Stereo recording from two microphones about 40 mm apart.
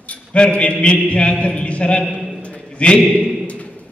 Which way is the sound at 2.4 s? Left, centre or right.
Left.